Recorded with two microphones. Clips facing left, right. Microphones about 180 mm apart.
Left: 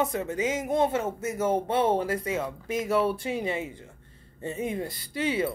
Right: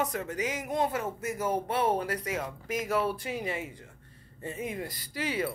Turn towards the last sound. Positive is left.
turn(degrees=25)  # may be behind; listen again after turning